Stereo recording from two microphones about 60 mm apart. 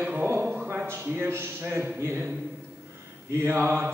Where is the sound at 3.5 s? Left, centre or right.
Right.